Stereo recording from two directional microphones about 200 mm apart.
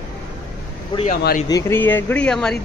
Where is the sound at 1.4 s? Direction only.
15° left (ahead or behind).